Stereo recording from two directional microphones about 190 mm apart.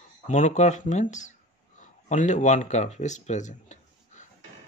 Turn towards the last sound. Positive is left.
turn(degrees=40)  # may be behind; listen again after turning